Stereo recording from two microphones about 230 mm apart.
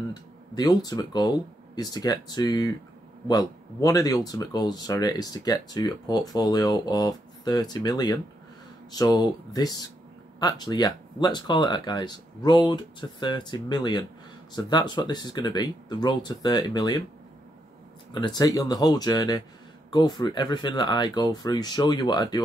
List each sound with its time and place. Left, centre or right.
0.1 s speech: centre
18.1 s speech: centre